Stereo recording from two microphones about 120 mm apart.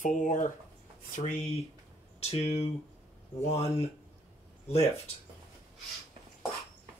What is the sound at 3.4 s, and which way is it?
Speech, 60° left (ahead or behind).